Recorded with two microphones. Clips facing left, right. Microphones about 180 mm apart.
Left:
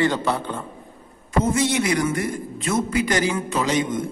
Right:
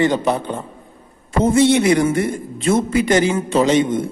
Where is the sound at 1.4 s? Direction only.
30° right (ahead or behind).